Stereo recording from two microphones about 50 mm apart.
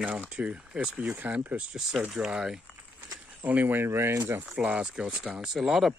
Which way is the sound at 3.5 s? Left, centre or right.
Right.